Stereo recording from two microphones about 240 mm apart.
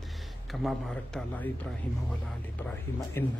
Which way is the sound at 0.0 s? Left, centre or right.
Centre.